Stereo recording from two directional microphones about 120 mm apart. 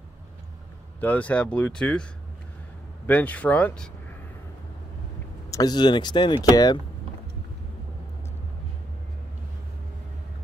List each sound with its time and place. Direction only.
1.0 s speech: 15° left (ahead or behind)
3.1 s speech: 15° left (ahead or behind)
5.5 s speech: 35° left (ahead or behind)